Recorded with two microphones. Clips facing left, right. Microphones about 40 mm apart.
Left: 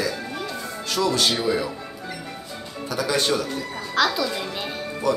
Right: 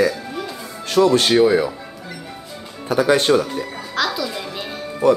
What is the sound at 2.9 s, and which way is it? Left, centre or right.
Speech, right.